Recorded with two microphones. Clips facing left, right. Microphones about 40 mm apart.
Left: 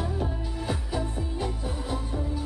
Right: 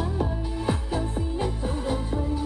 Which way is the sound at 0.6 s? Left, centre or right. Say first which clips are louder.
Right 3 dB; right.